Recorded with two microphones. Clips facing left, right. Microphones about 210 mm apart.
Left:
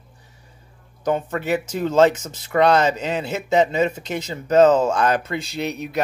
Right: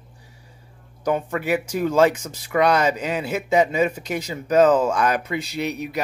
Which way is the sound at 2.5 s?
30° left (ahead or behind).